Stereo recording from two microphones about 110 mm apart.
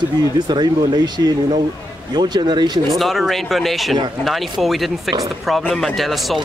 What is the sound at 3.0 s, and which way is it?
Speech, centre (ahead or behind).